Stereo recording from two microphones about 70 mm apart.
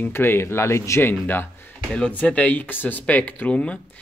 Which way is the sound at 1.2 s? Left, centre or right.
Left.